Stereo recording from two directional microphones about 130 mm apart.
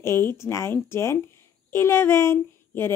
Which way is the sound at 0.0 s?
20° left (ahead or behind).